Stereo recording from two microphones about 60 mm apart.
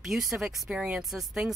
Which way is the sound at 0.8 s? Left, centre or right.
Centre.